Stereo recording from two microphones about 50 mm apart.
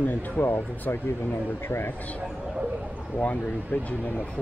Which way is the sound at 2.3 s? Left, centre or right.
Centre.